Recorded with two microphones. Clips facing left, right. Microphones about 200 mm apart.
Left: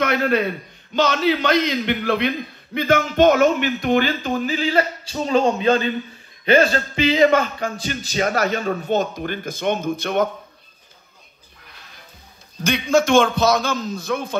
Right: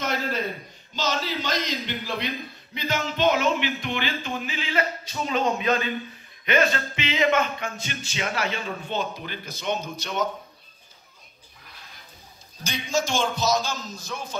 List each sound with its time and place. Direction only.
0.0 s a man's voice: 65° left (ahead or behind)
12.6 s a man's voice: 60° left (ahead or behind)